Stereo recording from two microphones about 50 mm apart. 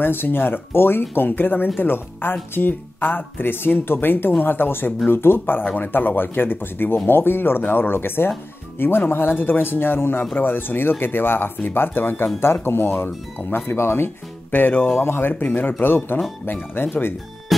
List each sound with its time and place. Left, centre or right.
0.0 s speech: left
15.0 s speech: left
15.3 s speech: left
17.5 s music: centre